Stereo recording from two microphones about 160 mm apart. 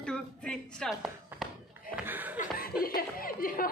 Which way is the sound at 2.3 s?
65° left (ahead or behind).